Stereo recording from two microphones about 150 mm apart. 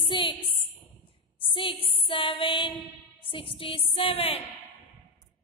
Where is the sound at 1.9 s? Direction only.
40° left (ahead or behind).